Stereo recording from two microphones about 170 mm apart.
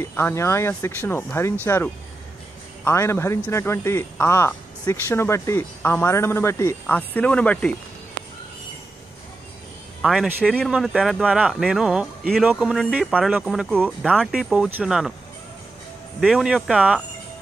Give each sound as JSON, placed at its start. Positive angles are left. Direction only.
{"t": 0.0, "sound": "speech", "side_deg": 15}
{"t": 10.0, "sound": "speech", "side_deg": 0}
{"t": 16.2, "sound": "speech", "side_deg": -5}